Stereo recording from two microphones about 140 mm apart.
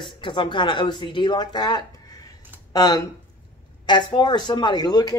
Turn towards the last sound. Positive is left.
turn(degrees=30)  # may be behind; listen again after turning